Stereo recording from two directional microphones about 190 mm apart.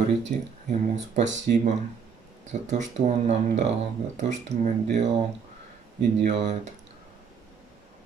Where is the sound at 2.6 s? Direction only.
40° right (ahead or behind).